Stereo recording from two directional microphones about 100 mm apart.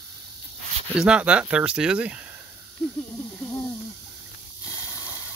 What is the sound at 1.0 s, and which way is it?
Speech, 10° right (ahead or behind).